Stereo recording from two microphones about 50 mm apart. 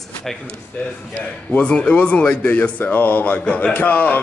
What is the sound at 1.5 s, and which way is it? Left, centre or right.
Speech, left.